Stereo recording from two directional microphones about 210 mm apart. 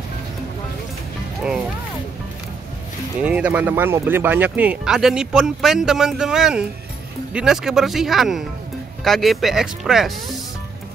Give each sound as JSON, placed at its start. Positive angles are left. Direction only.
{"t": 3.2, "sound": "speech", "side_deg": -5}